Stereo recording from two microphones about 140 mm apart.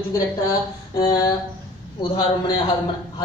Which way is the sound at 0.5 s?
25° left (ahead or behind).